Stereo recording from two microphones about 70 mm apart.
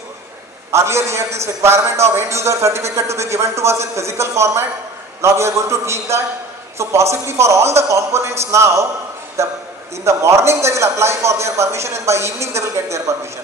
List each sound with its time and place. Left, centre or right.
0.7 s a man's voice: right